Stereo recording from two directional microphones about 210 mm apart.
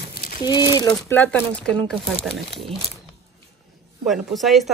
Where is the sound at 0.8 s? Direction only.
5° left (ahead or behind).